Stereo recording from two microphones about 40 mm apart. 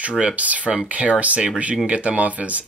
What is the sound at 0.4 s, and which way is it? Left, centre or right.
Speech, right.